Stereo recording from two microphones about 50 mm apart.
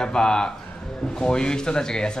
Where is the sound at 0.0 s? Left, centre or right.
Centre.